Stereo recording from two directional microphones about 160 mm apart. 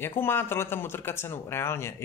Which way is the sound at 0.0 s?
15° left (ahead or behind).